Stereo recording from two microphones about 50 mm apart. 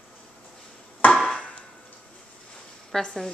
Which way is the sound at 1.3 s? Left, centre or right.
Left.